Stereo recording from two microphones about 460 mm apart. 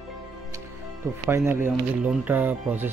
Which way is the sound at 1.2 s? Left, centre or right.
Centre.